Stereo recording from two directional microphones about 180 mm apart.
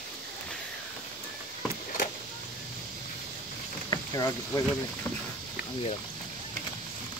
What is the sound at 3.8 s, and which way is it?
Vehicle, 20° left (ahead or behind).